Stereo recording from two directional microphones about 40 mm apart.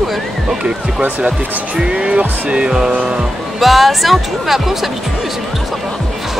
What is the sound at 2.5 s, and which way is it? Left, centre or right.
Speech, right.